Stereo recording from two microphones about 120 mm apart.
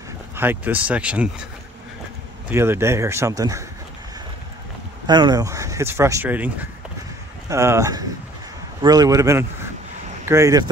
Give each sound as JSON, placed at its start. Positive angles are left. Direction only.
{"t": 0.4, "sound": "speech", "side_deg": -15}
{"t": 2.5, "sound": "speech", "side_deg": -20}
{"t": 5.0, "sound": "speech", "side_deg": -35}
{"t": 6.2, "sound": "speech", "side_deg": -15}
{"t": 7.4, "sound": "speech", "side_deg": -25}